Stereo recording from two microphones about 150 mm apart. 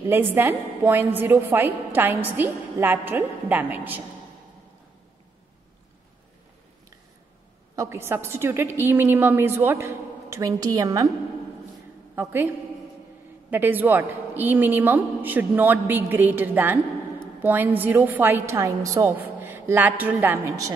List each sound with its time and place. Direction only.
0.0 s a woman's voice: 15° right (ahead or behind)
7.7 s a woman's voice: 20° right (ahead or behind)
12.2 s a woman's voice: 15° right (ahead or behind)